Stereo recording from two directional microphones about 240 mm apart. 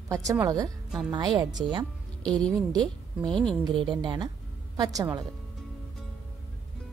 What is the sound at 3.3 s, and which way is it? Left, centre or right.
Speech, centre.